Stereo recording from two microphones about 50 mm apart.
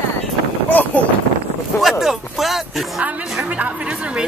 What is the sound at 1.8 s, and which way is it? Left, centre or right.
Speech, centre.